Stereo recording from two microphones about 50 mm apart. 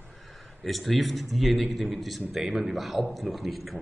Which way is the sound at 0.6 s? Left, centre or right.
Centre.